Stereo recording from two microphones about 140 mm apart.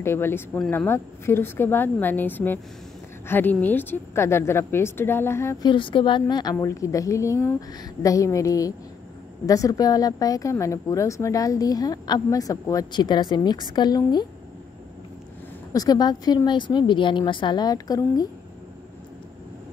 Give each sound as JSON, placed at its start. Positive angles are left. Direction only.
{"t": 0.0, "sound": "a woman's voice", "side_deg": 15}
{"t": 5.6, "sound": "a woman's voice", "side_deg": 35}
{"t": 15.7, "sound": "a woman's voice", "side_deg": 25}